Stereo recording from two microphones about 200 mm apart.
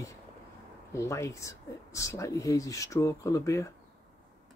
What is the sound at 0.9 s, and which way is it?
Speech, 15° left (ahead or behind).